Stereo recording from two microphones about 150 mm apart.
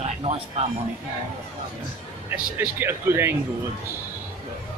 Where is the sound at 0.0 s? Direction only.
45° right (ahead or behind).